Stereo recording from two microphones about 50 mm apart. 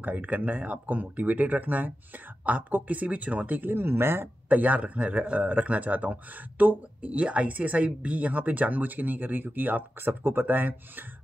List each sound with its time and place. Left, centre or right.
0.0 s a woman's voice: right
3.7 s speech: right
4.5 s a woman's voice: right